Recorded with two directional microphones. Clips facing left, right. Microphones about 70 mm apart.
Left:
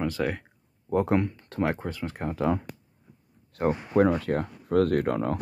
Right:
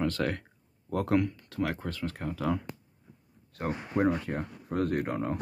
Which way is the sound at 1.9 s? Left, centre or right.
Centre.